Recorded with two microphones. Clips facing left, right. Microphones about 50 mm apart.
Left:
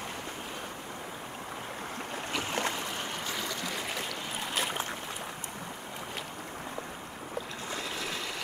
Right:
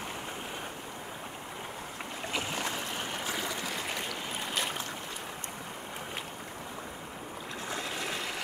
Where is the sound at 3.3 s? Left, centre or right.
Centre.